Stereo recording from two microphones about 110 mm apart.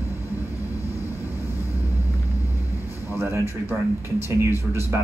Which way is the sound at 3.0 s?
20° right (ahead or behind).